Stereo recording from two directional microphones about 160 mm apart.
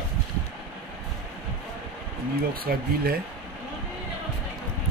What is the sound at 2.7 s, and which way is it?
Speech, 70° right (ahead or behind).